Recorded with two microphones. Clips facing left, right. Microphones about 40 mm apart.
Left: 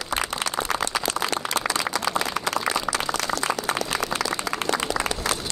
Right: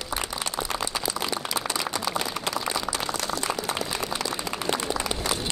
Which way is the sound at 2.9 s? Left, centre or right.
Left.